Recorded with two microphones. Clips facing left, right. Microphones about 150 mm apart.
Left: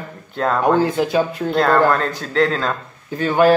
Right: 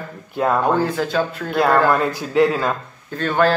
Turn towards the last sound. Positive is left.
turn(degrees=10)  # may be behind; listen again after turning